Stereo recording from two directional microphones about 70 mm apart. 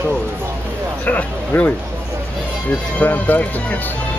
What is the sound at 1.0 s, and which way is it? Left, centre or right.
Speech, left.